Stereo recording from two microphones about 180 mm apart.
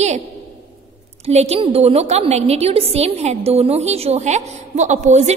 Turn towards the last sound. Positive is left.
turn(degrees=-40)  # may be behind; listen again after turning